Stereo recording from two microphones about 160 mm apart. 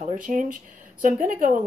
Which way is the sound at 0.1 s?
55° right (ahead or behind).